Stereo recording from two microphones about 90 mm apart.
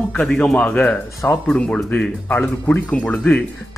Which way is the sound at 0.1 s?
10° left (ahead or behind).